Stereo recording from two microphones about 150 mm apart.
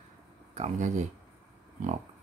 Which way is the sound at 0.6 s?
50° right (ahead or behind).